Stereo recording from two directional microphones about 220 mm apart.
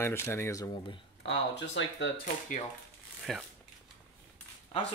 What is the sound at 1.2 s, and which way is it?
Speech, 55° left (ahead or behind).